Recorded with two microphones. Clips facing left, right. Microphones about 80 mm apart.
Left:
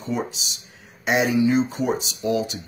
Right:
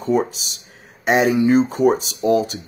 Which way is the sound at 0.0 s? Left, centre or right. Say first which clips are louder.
Right 8 dB; right.